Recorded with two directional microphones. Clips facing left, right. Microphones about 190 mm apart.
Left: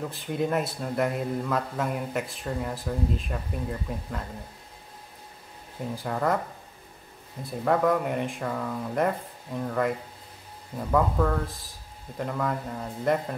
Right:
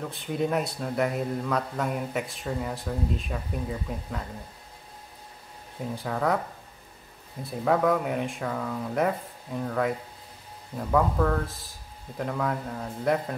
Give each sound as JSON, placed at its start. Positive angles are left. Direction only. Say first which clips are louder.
{"t": 0.0, "sound": "a man's voice", "louder": "even", "side_deg": 0}
{"t": 5.9, "sound": "a man's voice", "louder": "even", "side_deg": 0}
{"t": 7.4, "sound": "a man's voice", "louder": "even", "side_deg": 0}